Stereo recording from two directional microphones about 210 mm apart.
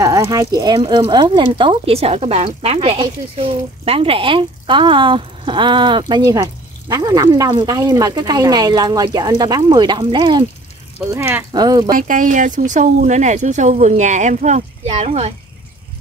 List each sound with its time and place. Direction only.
0.0 s speech: 15° right (ahead or behind)
11.0 s speech: 10° right (ahead or behind)
11.9 s speech: 40° right (ahead or behind)